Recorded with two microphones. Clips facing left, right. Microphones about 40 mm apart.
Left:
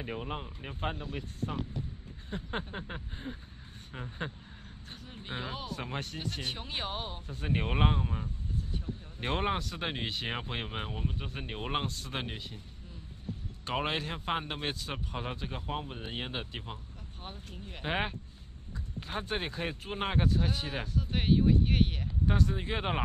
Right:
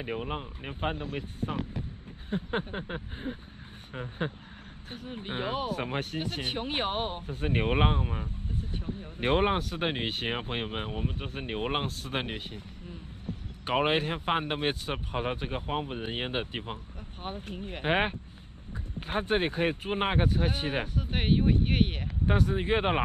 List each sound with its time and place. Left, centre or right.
0.0 s speech: centre
4.9 s speech: right
8.5 s speech: right
12.5 s a sound: right
13.7 s speech: right